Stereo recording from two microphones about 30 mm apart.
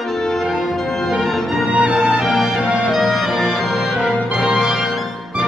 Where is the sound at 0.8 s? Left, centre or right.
Centre.